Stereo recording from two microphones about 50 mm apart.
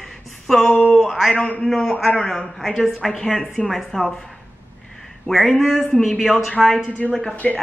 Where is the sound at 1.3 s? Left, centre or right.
Left.